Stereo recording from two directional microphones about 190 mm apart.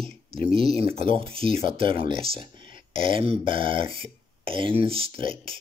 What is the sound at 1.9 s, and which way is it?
Speech, 45° left (ahead or behind).